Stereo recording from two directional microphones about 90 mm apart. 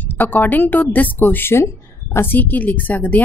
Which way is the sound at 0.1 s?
20° left (ahead or behind).